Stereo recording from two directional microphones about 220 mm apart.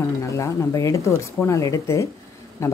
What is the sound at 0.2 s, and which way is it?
Speech, 15° left (ahead or behind).